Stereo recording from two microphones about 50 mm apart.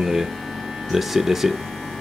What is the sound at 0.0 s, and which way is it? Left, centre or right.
Speech, centre.